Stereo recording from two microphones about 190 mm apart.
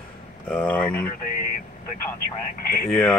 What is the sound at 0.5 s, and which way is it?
Speech, 5° left (ahead or behind).